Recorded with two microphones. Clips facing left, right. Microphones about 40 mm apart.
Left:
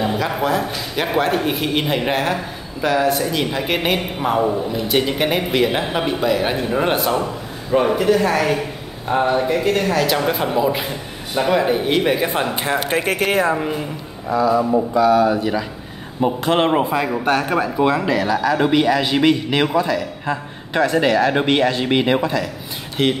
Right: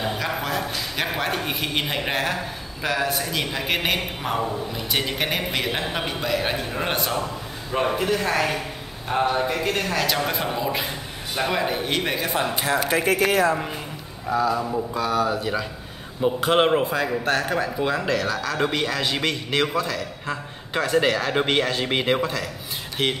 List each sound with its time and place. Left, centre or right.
0.2 s a man's voice: centre
12.2 s speech: left
13.0 s speech: left
15.1 s a man's voice: centre
16.7 s a man's voice: centre